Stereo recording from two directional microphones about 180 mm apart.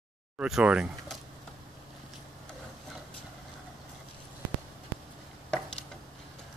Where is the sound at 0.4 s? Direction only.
5° right (ahead or behind).